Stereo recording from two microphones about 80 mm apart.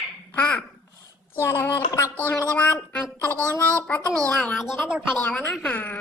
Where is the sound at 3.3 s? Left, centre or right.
Right.